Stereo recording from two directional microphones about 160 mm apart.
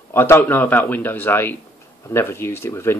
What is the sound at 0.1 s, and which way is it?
Speech, 15° left (ahead or behind).